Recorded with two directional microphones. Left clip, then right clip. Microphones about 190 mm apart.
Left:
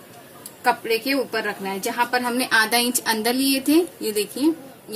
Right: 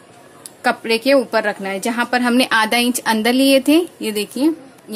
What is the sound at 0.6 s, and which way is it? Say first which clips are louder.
A woman's voice: right 3 dB; 60° right (ahead or behind).